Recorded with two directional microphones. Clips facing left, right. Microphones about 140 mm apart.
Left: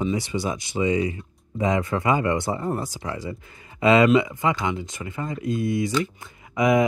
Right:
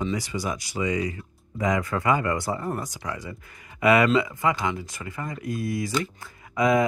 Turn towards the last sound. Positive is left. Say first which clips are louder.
# left 2 dB
turn(degrees=20)  # may be behind; listen again after turning